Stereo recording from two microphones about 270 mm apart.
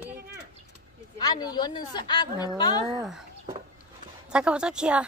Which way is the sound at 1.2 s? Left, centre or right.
Centre.